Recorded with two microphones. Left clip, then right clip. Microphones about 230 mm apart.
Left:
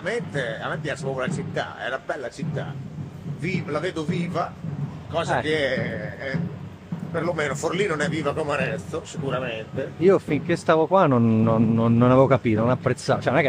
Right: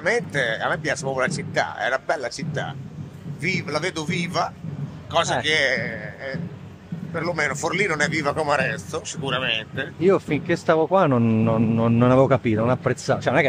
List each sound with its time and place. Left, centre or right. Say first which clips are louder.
0.0 s speech: right 5 dB; right
7.2 s speech: right 1 dB; centre
9.9 s a man's voice: left 1 dB; centre